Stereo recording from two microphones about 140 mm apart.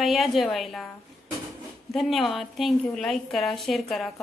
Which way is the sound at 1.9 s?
Centre (ahead or behind).